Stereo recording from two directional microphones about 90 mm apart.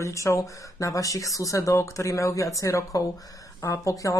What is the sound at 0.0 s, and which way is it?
Speech, 35° left (ahead or behind).